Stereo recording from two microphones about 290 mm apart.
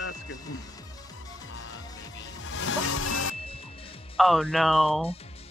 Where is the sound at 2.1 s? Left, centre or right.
Left.